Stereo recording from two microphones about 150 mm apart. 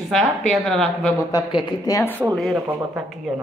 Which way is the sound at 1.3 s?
30° left (ahead or behind).